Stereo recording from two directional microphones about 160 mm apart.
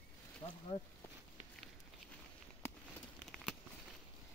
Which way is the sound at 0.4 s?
30° left (ahead or behind).